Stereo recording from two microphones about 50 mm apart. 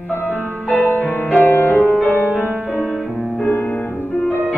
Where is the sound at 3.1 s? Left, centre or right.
Centre.